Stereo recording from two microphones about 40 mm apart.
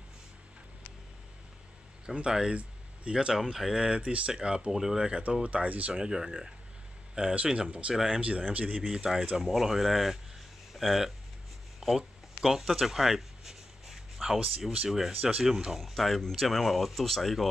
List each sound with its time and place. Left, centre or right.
2.0 s speech: right
3.3 s speech: centre
3.8 s speech: right
4.6 s speech: centre
5.4 s speech: right
5.9 s speech: centre
7.2 s speech: right
7.9 s speech: centre
8.2 s speech: right
8.8 s speech: centre
11.8 s speech: centre
12.4 s a sound: centre
14.9 s speech: centre
15.8 s speech: centre